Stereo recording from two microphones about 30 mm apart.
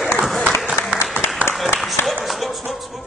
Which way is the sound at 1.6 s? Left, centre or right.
Centre.